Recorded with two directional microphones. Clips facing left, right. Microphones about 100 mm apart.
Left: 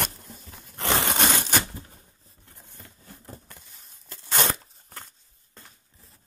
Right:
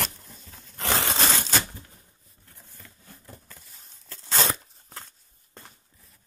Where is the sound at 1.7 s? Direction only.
25° left (ahead or behind).